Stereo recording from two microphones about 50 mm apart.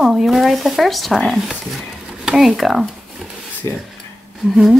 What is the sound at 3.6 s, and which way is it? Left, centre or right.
Speech, left.